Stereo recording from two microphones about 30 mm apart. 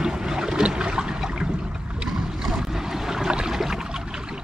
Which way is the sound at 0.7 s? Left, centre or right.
Right.